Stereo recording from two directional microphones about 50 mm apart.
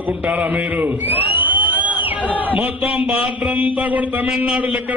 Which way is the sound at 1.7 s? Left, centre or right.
Right.